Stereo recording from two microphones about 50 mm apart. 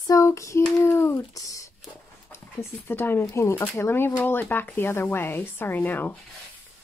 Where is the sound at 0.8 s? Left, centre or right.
Left.